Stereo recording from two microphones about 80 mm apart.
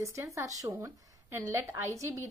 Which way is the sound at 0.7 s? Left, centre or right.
Right.